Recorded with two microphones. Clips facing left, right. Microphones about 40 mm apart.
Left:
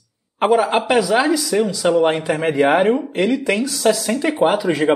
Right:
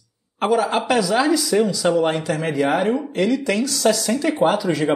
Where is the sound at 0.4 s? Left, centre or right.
Left.